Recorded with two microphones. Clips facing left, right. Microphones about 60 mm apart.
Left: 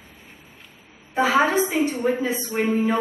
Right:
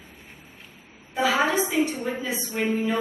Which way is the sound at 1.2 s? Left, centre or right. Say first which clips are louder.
Left 3 dB; left.